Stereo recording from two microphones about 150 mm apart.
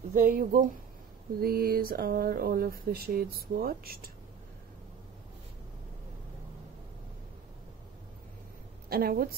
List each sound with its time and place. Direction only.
0.1 s speech: 65° right (ahead or behind)
1.4 s speech: 80° right
8.8 s a woman's voice: 80° right